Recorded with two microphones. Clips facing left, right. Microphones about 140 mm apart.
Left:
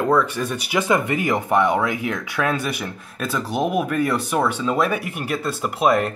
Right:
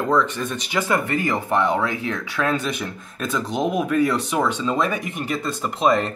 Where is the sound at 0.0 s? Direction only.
10° left (ahead or behind).